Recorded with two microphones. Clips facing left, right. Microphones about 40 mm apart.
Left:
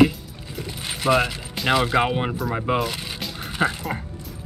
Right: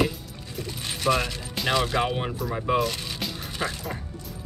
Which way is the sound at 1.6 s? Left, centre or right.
Centre.